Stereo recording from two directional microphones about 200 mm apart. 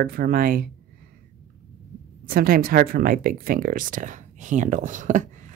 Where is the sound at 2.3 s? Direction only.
50° right (ahead or behind).